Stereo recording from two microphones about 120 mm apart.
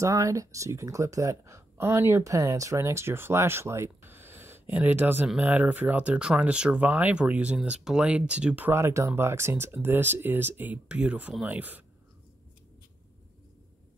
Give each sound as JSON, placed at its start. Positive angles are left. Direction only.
{"t": 0.0, "sound": "speech", "side_deg": -25}